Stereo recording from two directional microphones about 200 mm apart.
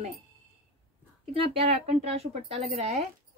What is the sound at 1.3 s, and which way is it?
Speech, 25° right (ahead or behind).